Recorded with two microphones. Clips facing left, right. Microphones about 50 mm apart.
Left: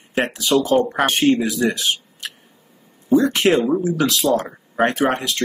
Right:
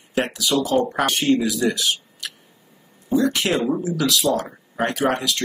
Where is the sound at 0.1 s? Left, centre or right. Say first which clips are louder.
Left 3 dB; left.